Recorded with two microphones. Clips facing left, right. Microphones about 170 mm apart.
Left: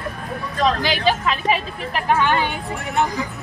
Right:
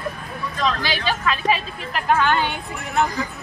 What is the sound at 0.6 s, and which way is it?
Speech, 45° left (ahead or behind).